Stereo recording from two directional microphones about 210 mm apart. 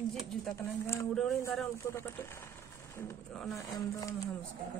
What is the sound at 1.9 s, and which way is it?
Speech, 10° left (ahead or behind).